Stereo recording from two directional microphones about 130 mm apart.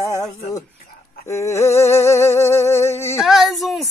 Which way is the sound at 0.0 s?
20° left (ahead or behind).